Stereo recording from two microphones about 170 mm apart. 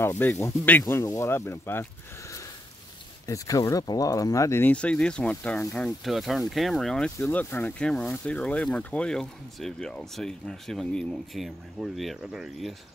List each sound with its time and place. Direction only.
0.0 s speech: 15° left (ahead or behind)